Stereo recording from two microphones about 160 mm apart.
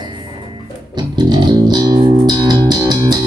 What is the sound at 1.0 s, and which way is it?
Music, 25° right (ahead or behind).